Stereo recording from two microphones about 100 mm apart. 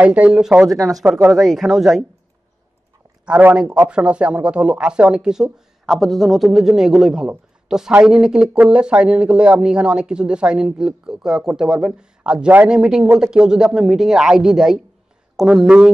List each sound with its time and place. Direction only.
0.0 s speech: 15° right (ahead or behind)
0.7 s speech: centre (ahead or behind)
3.3 s speech: 15° right (ahead or behind)